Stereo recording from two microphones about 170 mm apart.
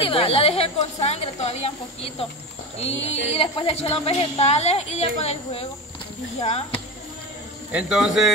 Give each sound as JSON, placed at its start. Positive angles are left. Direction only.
{"t": 0.0, "sound": "a woman's voice", "side_deg": 30}
{"t": 7.7, "sound": "speech", "side_deg": -5}